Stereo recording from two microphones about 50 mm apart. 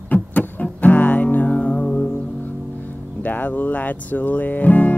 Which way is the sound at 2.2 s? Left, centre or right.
Left.